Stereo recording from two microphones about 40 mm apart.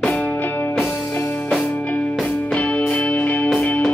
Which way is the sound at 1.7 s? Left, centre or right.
Left.